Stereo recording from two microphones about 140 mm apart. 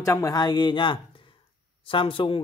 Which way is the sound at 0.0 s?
20° left (ahead or behind).